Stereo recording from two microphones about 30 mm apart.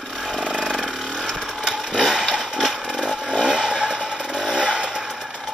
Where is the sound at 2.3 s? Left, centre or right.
Centre.